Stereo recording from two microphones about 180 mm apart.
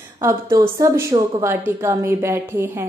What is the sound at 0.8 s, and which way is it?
A woman's voice, 20° right (ahead or behind).